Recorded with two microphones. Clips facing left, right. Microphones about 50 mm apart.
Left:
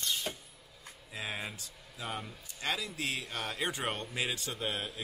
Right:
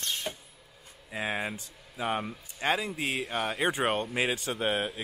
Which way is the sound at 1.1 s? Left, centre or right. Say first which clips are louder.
Right 7 dB; right.